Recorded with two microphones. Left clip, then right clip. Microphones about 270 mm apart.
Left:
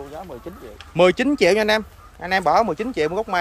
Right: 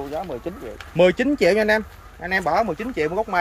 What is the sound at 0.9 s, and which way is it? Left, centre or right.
Speech, centre.